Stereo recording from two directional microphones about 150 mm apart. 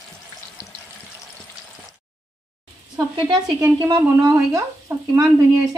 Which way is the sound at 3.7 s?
30° right (ahead or behind).